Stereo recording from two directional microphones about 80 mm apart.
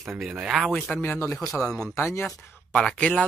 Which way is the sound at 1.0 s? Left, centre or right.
Left.